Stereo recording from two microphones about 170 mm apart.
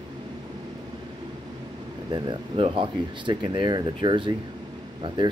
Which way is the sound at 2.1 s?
30° right (ahead or behind).